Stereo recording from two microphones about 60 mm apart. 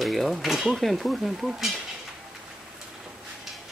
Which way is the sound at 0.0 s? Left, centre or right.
Centre.